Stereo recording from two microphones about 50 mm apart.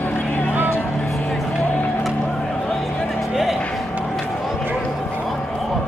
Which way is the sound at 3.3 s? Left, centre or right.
Centre.